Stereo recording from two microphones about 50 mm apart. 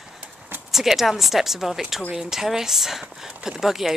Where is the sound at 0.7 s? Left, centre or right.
Centre.